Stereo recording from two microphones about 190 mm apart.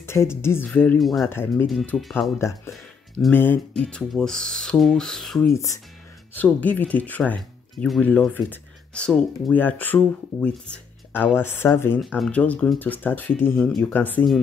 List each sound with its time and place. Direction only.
0.0 s speech: 15° left (ahead or behind)
1.2 s speech: 10° left (ahead or behind)
1.7 s speech: centre (ahead or behind)
2.3 s speech: 15° left (ahead or behind)
5.5 s speech: 15° left (ahead or behind)